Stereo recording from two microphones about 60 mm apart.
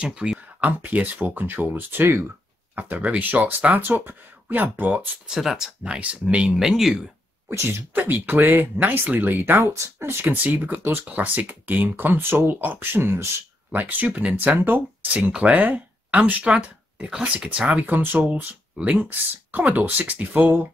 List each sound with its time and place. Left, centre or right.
0.0 s speech: centre
0.6 s speech: right
2.7 s speech: right
5.3 s speech: centre
5.9 s speech: right
6.6 s speech: centre
7.9 s speech: right
10.2 s speech: right
11.1 s speech: right